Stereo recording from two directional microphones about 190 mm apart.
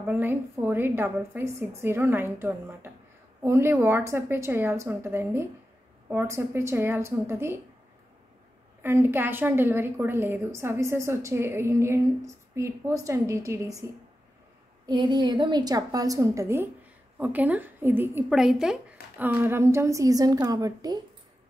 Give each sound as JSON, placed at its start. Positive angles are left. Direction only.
{"t": 0.0, "sound": "a woman's voice", "side_deg": -10}
{"t": 8.8, "sound": "a woman's voice", "side_deg": -10}
{"t": 14.9, "sound": "a woman's voice", "side_deg": -25}